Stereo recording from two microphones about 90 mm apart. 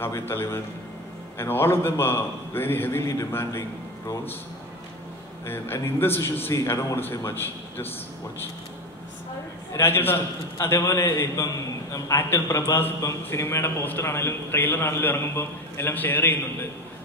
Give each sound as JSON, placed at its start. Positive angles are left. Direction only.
{"t": 0.0, "sound": "a man's voice", "side_deg": 25}
{"t": 5.5, "sound": "a man's voice", "side_deg": 25}
{"t": 9.7, "sound": "a man's voice", "side_deg": 25}